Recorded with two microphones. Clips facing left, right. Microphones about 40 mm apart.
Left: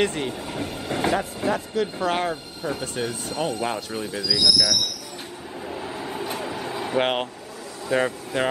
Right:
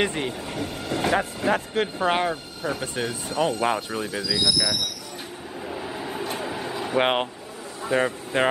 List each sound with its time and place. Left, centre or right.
0.0 s speech: centre
1.1 s speech: right
2.1 s speech: centre
2.8 s speech: right
4.4 s speech: right
5.7 s vehicle: centre
7.0 s speech: centre
7.9 s speech: right